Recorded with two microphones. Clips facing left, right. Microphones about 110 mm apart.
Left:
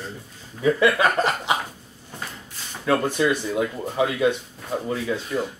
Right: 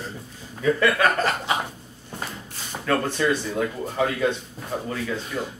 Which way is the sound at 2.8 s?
15° left (ahead or behind).